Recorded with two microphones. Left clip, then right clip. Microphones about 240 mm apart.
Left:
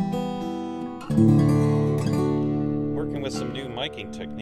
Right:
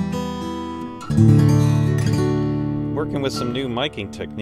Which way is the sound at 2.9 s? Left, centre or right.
Centre.